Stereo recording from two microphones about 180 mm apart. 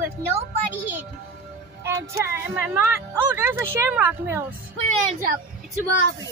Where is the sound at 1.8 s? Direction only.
15° right (ahead or behind).